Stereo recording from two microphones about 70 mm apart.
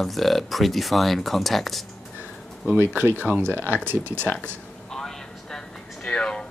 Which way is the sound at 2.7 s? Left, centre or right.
Right.